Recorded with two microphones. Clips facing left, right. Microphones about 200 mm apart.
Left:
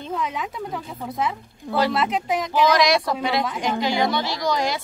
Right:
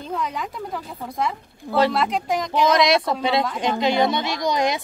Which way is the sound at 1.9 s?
5° left (ahead or behind).